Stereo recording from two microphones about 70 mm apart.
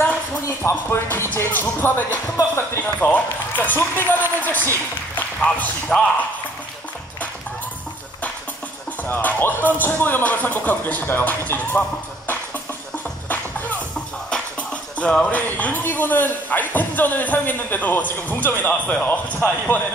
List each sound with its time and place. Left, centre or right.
0.5 s speech: left; by 6.1 s centre
9.0 s speech: left
14.3 s music: centre
15.4 s speech: left